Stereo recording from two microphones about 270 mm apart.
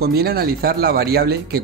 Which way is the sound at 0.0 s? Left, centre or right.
Right.